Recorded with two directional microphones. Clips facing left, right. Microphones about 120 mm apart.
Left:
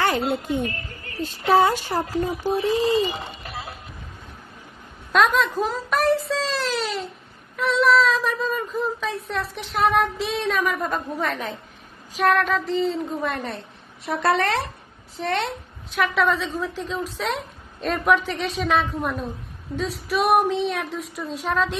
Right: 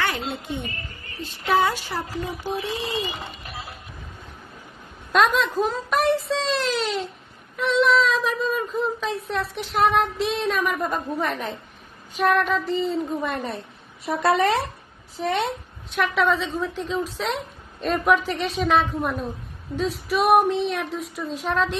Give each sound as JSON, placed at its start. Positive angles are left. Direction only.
{"t": 0.0, "sound": "a woman's voice", "side_deg": 40}
{"t": 5.1, "sound": "a woman's voice", "side_deg": 0}